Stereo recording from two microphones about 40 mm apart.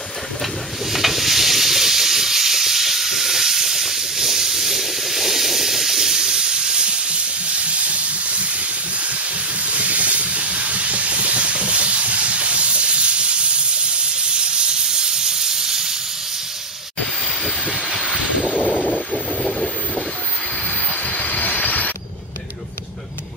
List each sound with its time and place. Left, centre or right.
0.9 s sizzle: centre; by 8.5 s right
9.7 s steam: right; by 15.9 s centre
21.1 s train: left